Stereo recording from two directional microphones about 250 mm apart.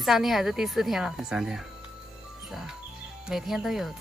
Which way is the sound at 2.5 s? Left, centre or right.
Centre.